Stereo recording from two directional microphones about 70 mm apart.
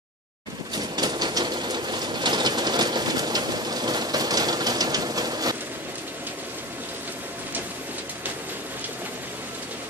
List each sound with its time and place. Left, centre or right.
0.7 s sewing machine: right